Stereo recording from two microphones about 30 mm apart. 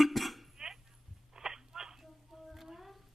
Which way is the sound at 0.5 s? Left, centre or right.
Centre.